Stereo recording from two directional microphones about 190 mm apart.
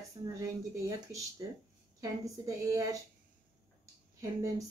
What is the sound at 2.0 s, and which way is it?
Speech, 15° right (ahead or behind).